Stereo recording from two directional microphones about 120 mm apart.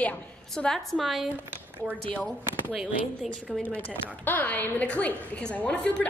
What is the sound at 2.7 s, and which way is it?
Speech, 5° right (ahead or behind).